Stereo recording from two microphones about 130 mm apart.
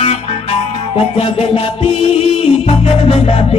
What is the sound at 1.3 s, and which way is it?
Music, 45° left (ahead or behind).